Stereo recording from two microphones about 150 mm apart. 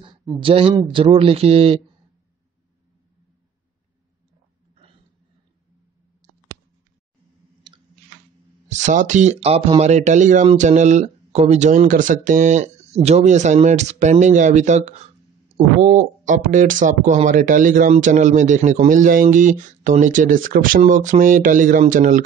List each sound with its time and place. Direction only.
0.4 s speech: 35° right (ahead or behind)
8.6 s speech: 55° right (ahead or behind)